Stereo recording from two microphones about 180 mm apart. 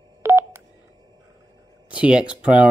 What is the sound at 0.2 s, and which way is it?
Telephone dialing, 15° right (ahead or behind).